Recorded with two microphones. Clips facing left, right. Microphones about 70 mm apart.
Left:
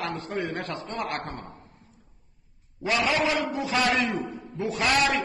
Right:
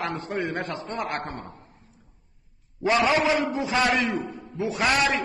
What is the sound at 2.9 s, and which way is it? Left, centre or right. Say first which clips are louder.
A man's voice: right 4 dB; right.